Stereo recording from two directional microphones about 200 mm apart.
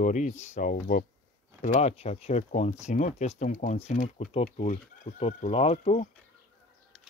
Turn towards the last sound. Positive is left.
turn(degrees=35)  # may be behind; listen again after turning